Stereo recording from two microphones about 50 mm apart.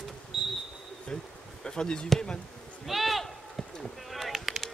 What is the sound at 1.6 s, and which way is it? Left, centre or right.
Speech, centre.